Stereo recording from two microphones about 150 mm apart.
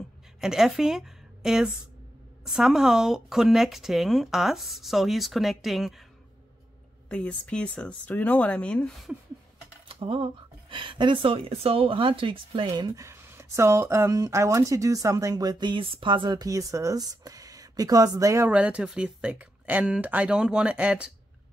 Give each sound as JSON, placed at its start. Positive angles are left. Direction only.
{"t": 0.4, "sound": "a woman's voice", "side_deg": -5}
{"t": 7.1, "sound": "speech", "side_deg": 10}
{"t": 9.8, "sound": "speech", "side_deg": -35}
{"t": 18.5, "sound": "speech", "side_deg": -10}